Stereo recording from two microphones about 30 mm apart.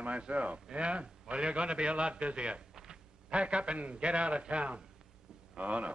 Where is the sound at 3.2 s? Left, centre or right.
Right.